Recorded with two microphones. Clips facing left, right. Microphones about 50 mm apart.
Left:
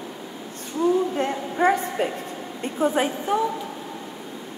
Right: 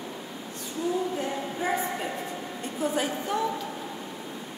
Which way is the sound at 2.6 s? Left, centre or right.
Left.